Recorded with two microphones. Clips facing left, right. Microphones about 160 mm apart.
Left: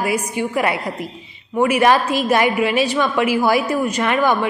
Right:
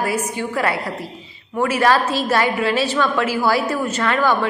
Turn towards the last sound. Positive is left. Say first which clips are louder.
# left 1 dB
turn(degrees=15)  # may be behind; listen again after turning